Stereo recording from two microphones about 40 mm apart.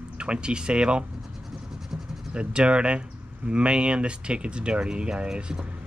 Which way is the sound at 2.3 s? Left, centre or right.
Right.